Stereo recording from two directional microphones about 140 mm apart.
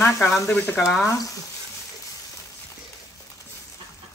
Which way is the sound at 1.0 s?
25° left (ahead or behind).